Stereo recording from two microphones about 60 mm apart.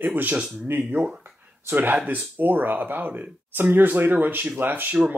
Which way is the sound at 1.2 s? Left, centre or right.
Right.